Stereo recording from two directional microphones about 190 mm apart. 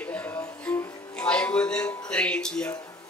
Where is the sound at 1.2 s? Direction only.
5° left (ahead or behind).